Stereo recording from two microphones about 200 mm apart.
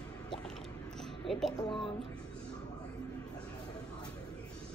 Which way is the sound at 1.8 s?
Centre (ahead or behind).